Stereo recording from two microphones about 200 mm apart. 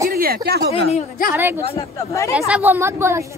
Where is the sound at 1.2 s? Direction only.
45° left (ahead or behind).